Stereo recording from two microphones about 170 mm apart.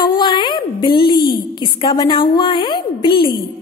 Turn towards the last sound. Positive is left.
turn(degrees=30)  # may be behind; listen again after turning